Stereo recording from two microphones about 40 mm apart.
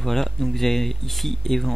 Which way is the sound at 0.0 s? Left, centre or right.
Centre.